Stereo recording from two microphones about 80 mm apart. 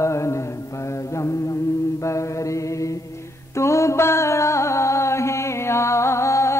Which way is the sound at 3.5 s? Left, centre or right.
Left.